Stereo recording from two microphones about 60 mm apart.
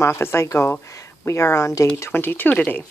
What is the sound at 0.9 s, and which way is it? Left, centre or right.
Speech, left.